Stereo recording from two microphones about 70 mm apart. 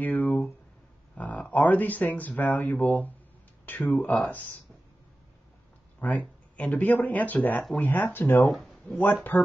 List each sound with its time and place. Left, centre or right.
0.0 s a sound: left
1.1 s speech: left
5.9 s speech: left
8.5 s speech: centre
8.9 s speech: left